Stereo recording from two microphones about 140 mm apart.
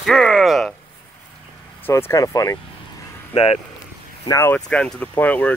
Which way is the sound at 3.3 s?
45° left (ahead or behind).